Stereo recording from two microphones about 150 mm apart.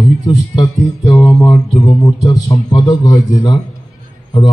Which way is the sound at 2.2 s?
30° left (ahead or behind).